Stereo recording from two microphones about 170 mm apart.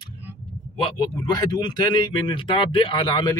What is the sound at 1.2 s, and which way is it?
Speech, 25° left (ahead or behind).